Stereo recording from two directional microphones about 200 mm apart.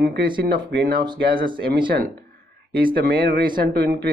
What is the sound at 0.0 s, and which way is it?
Speech, 50° right (ahead or behind).